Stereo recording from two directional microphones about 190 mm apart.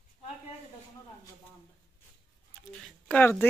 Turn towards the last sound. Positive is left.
turn(degrees=5)  # may be behind; listen again after turning